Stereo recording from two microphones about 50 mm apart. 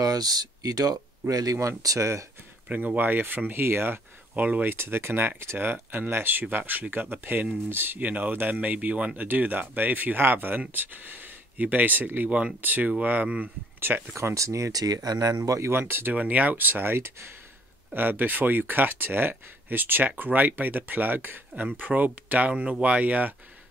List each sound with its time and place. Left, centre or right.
1.2 s speech: right
2.7 s speech: right
4.3 s speech: right
4.6 s speech: right
5.7 s speech: right
8.5 s speech: right
12.2 s speech: right
13.7 s speech: right
14.1 s speech: right
15.7 s speech: right
16.2 s speech: right
17.9 s speech: right